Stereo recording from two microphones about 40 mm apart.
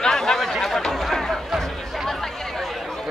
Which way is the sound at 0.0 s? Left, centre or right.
Centre.